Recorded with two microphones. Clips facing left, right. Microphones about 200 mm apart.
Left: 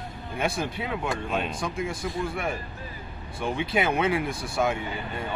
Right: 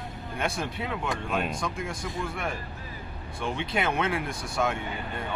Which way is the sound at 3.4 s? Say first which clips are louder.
Left 3 dB; 5° left (ahead or behind).